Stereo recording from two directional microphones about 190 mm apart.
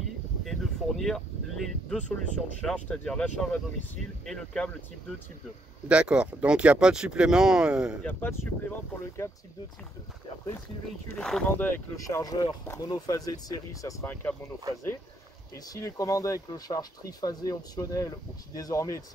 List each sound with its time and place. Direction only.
0.5 s speech: centre (ahead or behind)
5.9 s speech: 5° right (ahead or behind)
8.1 s speech: 10° left (ahead or behind)
11.1 s speech: centre (ahead or behind)
15.5 s speech: 20° left (ahead or behind)